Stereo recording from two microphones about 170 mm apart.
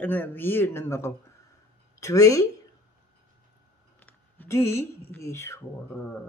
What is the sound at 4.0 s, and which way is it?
Speech, 10° left (ahead or behind).